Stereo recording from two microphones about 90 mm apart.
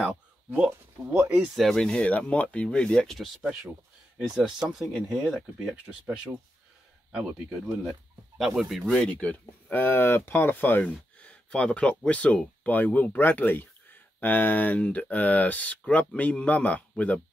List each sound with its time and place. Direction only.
0.7 s speech: 20° right (ahead or behind)
1.6 s speech: 5° left (ahead or behind)
4.4 s speech: 10° right (ahead or behind)
8.4 s speech: 5° right (ahead or behind)
8.8 s speech: 10° left (ahead or behind)
9.7 s speech: 25° left (ahead or behind)